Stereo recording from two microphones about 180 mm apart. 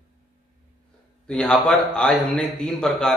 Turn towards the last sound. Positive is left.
turn(degrees=5)  # may be behind; listen again after turning